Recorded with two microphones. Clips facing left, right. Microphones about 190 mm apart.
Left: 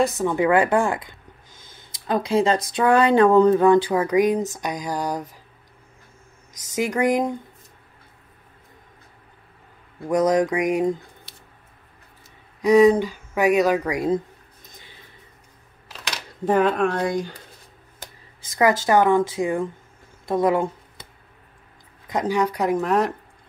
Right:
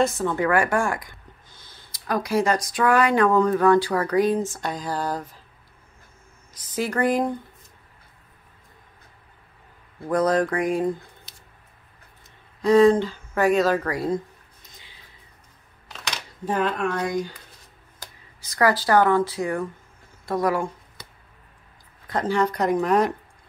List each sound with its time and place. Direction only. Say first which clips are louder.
0.0 s a woman's voice: left 2 dB; 15° left (ahead or behind)
6.5 s a woman's voice: left 2 dB; 15° left (ahead or behind)
10.0 s a woman's voice: left 2 dB; 15° left (ahead or behind)
12.6 s a woman's voice: left 1 dB; 15° left (ahead or behind)
15.9 s camera: even; 5° left (ahead or behind)
16.4 s speech: left 5 dB; 50° left (ahead or behind)
16.8 s speech: left 3 dB; 35° left (ahead or behind)
18.6 s speech: left 1 dB; 20° left (ahead or behind)
22.0 s a woman's voice: left 1 dB; 15° left (ahead or behind); by 23.1 s centre (ahead or behind)